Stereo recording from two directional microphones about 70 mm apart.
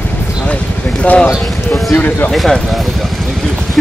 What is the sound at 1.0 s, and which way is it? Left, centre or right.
Speech, left.